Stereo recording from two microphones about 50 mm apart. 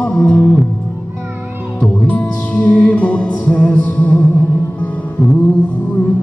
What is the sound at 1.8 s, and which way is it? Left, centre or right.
Music, left.